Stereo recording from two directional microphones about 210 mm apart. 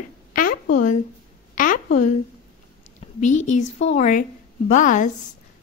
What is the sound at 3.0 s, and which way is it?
A woman's voice, 35° left (ahead or behind).